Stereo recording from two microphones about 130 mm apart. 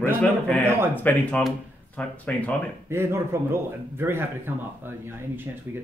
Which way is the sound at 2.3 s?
10° left (ahead or behind).